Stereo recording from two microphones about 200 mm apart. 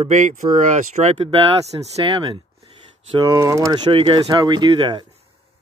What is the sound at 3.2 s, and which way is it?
Speech, 15° right (ahead or behind).